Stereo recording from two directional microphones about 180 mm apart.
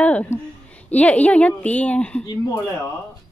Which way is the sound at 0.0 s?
10° left (ahead or behind).